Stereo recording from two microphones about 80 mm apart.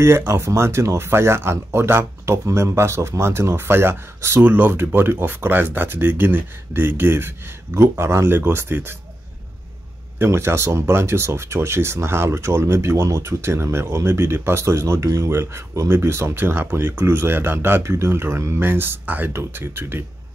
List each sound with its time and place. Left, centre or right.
0.0 s speech: right
10.1 s speech: right